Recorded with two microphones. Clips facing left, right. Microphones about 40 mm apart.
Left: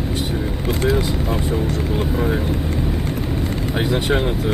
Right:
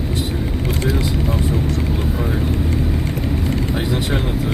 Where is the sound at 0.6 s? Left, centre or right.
Centre.